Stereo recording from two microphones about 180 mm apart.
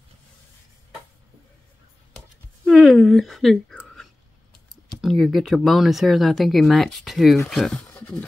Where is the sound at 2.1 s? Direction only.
Centre (ahead or behind).